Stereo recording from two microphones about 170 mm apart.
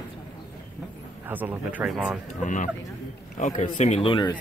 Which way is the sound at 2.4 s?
50° left (ahead or behind).